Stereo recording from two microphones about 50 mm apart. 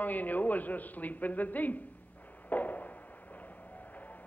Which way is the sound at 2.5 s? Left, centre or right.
Left.